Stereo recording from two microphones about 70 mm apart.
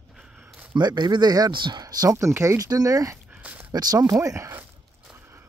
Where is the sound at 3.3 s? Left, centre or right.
Centre.